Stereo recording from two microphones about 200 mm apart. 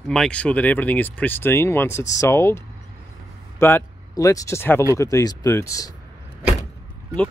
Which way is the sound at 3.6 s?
10° left (ahead or behind).